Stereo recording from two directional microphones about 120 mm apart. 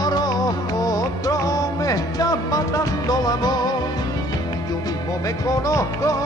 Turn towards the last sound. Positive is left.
turn(degrees=25)  # may be behind; listen again after turning